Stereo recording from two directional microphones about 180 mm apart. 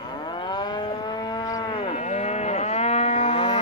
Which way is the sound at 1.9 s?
40° left (ahead or behind).